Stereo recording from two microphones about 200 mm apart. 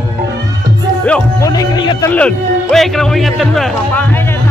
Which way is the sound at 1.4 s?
20° left (ahead or behind).